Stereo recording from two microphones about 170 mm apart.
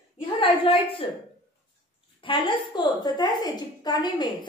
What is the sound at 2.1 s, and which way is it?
A woman's voice, 30° left (ahead or behind).